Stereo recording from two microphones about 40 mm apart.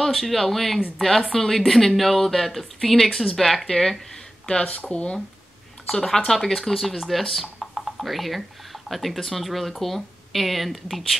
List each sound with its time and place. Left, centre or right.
0.0 s speech: centre
4.5 s speech: left
5.9 s speech: centre